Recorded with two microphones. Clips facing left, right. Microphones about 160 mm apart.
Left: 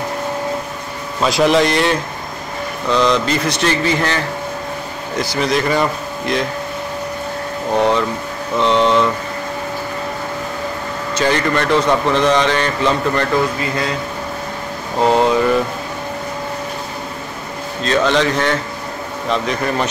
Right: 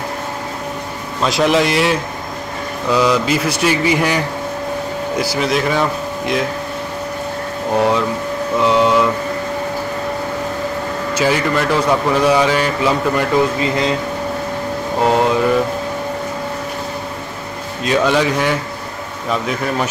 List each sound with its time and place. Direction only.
1.2 s a man's voice: centre (ahead or behind)
5.2 s speech: 5° right (ahead or behind)
7.7 s a man's voice: 5° right (ahead or behind)
11.1 s a man's voice: 5° right (ahead or behind)
13.6 s speech: 20° right (ahead or behind)
15.0 s speech: centre (ahead or behind)
17.8 s a man's voice: 10° right (ahead or behind)